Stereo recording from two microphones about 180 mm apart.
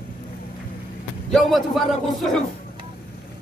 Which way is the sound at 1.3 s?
Centre (ahead or behind).